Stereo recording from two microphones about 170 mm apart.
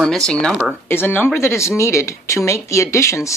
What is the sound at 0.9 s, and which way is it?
Speech, 10° left (ahead or behind).